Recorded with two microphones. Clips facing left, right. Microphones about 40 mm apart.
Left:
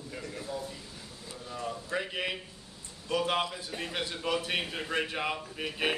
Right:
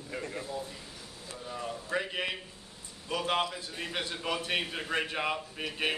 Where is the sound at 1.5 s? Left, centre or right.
Centre.